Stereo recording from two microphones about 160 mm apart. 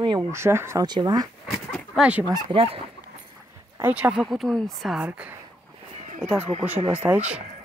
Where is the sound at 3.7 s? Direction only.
10° right (ahead or behind).